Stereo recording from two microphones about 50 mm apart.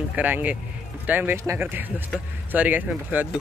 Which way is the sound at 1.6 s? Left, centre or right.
Right.